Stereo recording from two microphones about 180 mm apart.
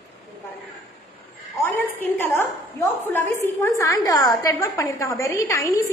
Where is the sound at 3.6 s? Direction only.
20° left (ahead or behind).